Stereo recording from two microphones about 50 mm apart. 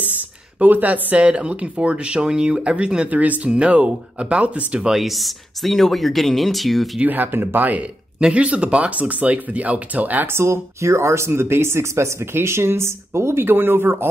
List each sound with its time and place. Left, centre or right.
0.0 s a sound: right
1.2 s speech: right
4.7 s speech: centre
5.0 s speech: centre
7.1 s speech: right
8.2 s speech: right
10.2 s speech: right